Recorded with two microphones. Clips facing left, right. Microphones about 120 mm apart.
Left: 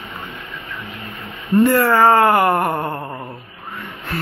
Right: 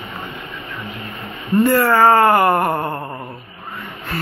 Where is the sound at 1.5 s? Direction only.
5° right (ahead or behind).